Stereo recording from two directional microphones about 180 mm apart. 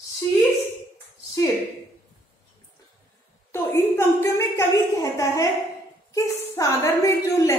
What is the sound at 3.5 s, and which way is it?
A woman's voice, 15° left (ahead or behind).